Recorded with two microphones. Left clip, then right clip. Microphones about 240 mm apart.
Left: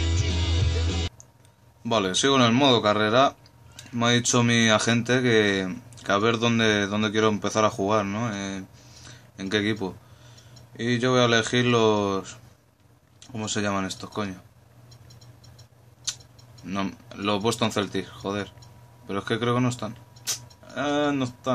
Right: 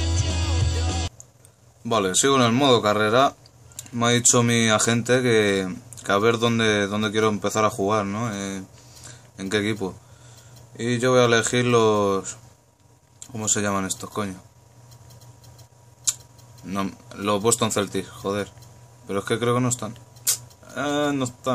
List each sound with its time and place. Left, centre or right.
0.6 s music: centre
1.8 s speech: centre
16.1 s tick-tock: centre
16.6 s speech: centre